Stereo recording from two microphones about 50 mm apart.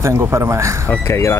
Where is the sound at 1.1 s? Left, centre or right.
Left.